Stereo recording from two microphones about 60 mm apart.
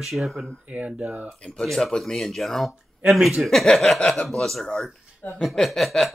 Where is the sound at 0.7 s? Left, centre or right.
Right.